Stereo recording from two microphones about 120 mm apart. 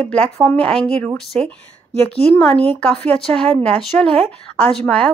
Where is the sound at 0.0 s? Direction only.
10° left (ahead or behind).